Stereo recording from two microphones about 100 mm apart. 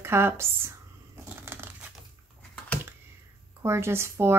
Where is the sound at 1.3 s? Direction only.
25° right (ahead or behind).